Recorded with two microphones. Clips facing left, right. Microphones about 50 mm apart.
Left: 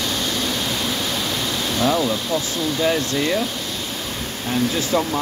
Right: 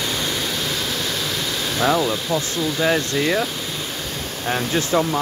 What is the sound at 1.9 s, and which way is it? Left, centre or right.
Speech, centre.